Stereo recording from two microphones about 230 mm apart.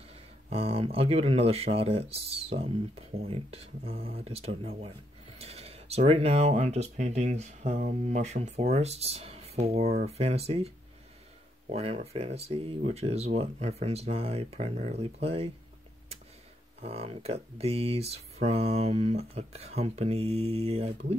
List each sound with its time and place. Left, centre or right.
0.5 s speech: right
11.7 s speech: right
16.8 s speech: right